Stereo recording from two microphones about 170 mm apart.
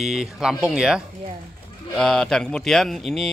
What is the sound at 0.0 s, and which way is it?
Speech, centre (ahead or behind).